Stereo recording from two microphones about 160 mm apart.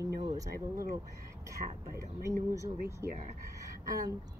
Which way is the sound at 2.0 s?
20° right (ahead or behind).